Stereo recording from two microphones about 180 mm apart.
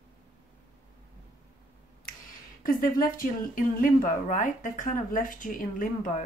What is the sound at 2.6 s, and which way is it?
Speech, 50° left (ahead or behind).